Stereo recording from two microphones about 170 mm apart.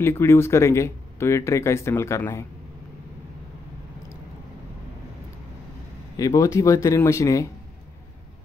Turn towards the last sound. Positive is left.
turn(degrees=20)  # may be behind; listen again after turning